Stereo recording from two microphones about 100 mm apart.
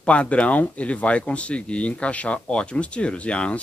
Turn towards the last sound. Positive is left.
turn(degrees=10)  # may be behind; listen again after turning